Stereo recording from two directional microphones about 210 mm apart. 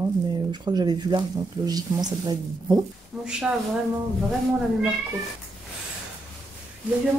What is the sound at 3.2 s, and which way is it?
Speech, 5° right (ahead or behind).